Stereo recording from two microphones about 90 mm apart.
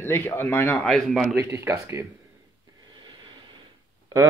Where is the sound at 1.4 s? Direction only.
30° right (ahead or behind).